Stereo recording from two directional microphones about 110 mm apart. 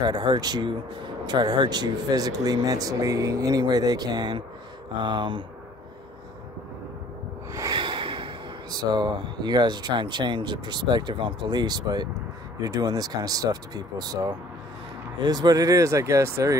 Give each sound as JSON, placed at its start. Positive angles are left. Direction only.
{"t": 0.0, "sound": "speech", "side_deg": -40}
{"t": 7.7, "sound": "speech", "side_deg": -45}